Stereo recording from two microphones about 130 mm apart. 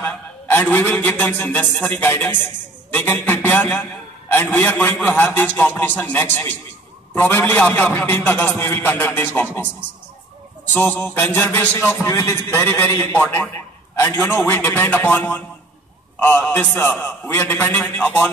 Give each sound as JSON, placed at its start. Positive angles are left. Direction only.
{"t": 0.0, "sound": "a man's voice", "side_deg": 15}
{"t": 10.7, "sound": "a man's voice", "side_deg": 15}